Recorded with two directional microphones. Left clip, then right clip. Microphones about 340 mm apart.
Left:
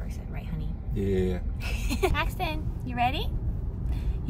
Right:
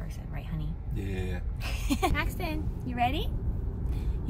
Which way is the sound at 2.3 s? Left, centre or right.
Left.